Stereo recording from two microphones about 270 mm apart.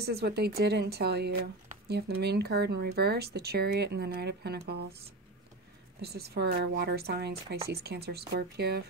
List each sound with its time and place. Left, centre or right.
0.0 s speech: right
5.9 s speech: right